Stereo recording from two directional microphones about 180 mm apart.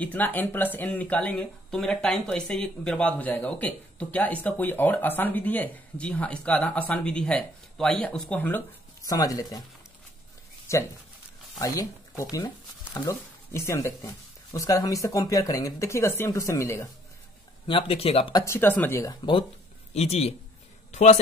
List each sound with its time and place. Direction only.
0.0 s speech: 10° left (ahead or behind)
10.7 s speech: 15° left (ahead or behind)
17.6 s speech: 30° left (ahead or behind)
18.3 s speech: 15° left (ahead or behind)
19.9 s speech: 35° left (ahead or behind)